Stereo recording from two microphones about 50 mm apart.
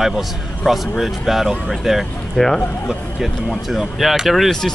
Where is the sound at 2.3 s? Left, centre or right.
Centre.